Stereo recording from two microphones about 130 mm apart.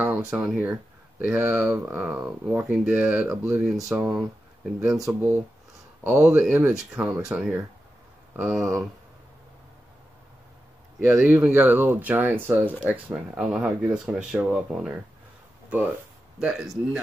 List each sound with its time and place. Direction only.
0.0 s speech: 10° right (ahead or behind)
3.6 s speech: centre (ahead or behind)
6.0 s speech: 10° right (ahead or behind)
8.5 s speech: 25° right (ahead or behind)
11.0 s speech: 20° right (ahead or behind)
16.3 s speech: 5° right (ahead or behind)